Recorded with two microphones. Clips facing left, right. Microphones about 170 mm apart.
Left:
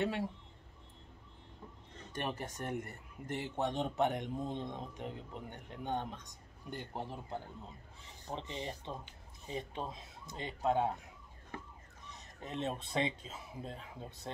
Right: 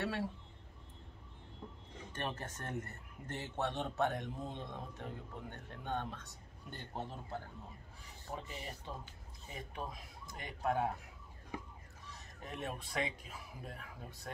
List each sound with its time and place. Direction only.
0.0 s speech: 15° left (ahead or behind)
2.1 s speech: 15° left (ahead or behind)
11.5 s emergency vehicle: 10° right (ahead or behind)
12.1 s speech: 20° left (ahead or behind)